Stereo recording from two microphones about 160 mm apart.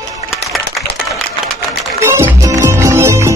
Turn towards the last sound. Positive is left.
turn(degrees=-15)  # may be behind; listen again after turning